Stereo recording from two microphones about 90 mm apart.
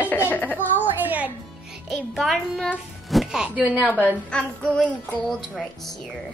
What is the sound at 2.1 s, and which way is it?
Speech, centre (ahead or behind).